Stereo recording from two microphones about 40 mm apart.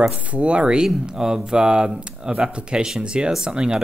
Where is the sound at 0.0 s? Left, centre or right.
Right.